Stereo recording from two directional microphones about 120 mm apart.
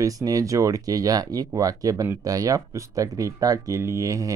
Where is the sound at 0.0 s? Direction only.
30° right (ahead or behind).